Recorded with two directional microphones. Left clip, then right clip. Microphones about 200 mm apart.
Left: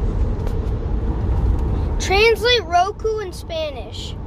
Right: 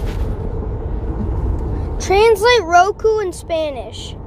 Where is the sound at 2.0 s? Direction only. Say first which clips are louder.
Right 3 dB; 20° right (ahead or behind).